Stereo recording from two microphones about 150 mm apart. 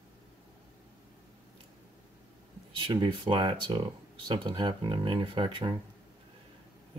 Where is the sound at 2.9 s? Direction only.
30° right (ahead or behind).